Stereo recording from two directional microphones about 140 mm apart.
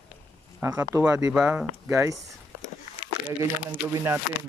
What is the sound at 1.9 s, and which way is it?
Speech, 20° right (ahead or behind).